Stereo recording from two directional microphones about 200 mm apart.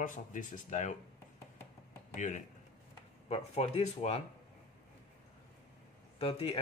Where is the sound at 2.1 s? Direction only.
35° left (ahead or behind).